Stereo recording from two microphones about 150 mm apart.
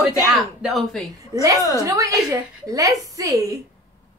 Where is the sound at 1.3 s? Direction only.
25° right (ahead or behind).